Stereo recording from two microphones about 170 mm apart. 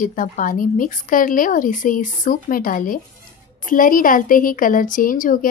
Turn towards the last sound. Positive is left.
turn(degrees=55)  # may be behind; listen again after turning